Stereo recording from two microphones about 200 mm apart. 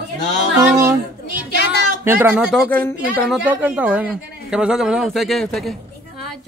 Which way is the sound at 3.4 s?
10° right (ahead or behind).